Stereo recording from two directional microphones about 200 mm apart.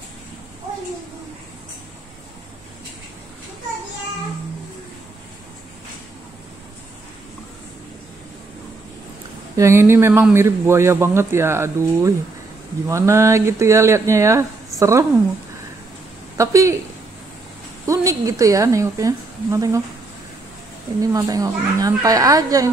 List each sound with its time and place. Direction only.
9.6 s speech: 15° right (ahead or behind)
16.3 s speech: 15° right (ahead or behind)
17.8 s speech: 15° right (ahead or behind)
21.0 s speech: 15° right (ahead or behind)